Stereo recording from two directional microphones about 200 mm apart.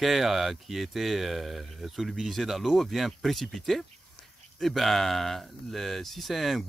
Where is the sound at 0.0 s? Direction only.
Centre (ahead or behind).